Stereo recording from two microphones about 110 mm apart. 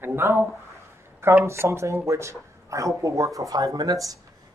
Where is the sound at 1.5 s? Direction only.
25° right (ahead or behind).